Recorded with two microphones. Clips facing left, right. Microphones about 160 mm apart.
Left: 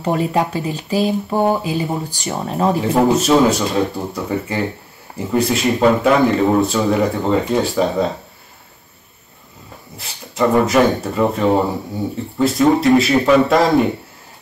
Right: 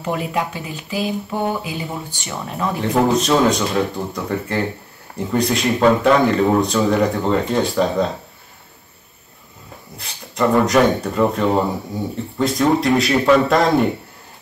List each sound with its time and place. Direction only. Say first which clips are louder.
0.0 s speech: left 4 dB; 35° left (ahead or behind)
2.8 s speech: right 1 dB; 5° left (ahead or behind)
10.6 s speech: left 1 dB; 5° left (ahead or behind)